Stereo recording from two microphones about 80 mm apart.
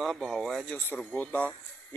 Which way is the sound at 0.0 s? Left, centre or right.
Centre.